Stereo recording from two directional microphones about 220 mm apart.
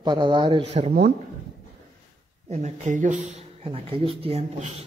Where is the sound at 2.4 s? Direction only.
30° right (ahead or behind).